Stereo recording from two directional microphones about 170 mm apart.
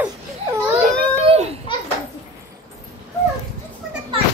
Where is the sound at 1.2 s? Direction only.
35° right (ahead or behind).